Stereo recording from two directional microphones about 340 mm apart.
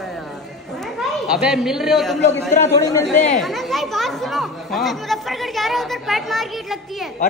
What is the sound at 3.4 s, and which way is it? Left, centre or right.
Speech, centre.